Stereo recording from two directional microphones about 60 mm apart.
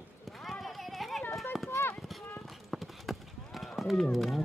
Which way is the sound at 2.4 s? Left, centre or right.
Centre.